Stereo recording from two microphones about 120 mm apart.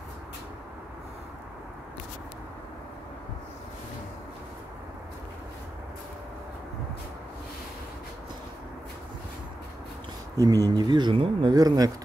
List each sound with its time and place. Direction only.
10.3 s speech: 30° right (ahead or behind)
11.5 s speech: 35° right (ahead or behind)